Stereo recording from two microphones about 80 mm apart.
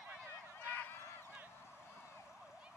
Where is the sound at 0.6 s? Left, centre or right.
Left.